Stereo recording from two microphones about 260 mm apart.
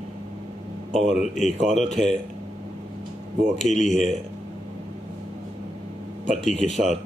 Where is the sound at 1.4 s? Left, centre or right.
Left.